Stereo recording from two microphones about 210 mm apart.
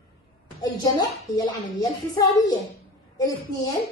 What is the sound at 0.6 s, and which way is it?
Speech, 20° left (ahead or behind).